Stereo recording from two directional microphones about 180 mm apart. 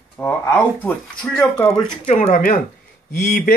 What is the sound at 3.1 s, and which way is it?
Speech, 55° left (ahead or behind).